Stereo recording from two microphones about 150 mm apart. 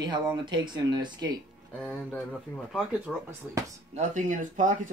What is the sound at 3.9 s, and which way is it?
Speech, 55° right (ahead or behind).